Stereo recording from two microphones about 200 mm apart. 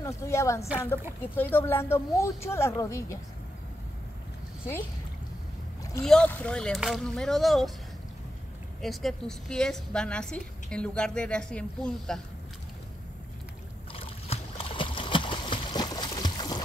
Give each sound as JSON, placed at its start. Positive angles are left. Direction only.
{"t": 0.0, "sound": "speech", "side_deg": 15}
{"t": 6.0, "sound": "a woman's voice", "side_deg": 5}
{"t": 8.8, "sound": "a woman's voice", "side_deg": 0}
{"t": 13.9, "sound": "a sound", "side_deg": 30}